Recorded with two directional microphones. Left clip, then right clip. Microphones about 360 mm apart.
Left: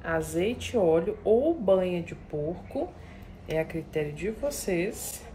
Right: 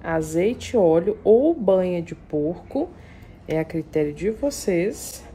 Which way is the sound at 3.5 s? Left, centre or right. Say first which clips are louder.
Right 6 dB; right.